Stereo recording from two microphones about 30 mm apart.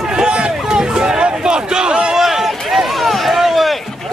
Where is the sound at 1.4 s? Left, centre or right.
Right.